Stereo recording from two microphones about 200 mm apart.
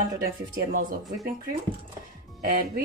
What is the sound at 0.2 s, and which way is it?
Speech, 45° right (ahead or behind).